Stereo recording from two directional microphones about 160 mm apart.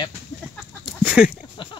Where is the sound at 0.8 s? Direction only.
5° right (ahead or behind).